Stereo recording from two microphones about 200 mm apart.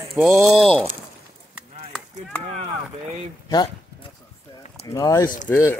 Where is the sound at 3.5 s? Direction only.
20° left (ahead or behind).